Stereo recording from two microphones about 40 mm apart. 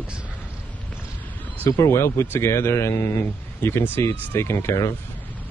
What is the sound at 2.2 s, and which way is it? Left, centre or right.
Speech, left.